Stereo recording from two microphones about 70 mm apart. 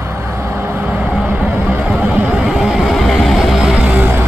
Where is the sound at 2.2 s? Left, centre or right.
Centre.